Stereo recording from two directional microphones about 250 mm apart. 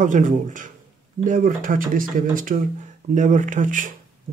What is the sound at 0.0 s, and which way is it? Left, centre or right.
Speech, right.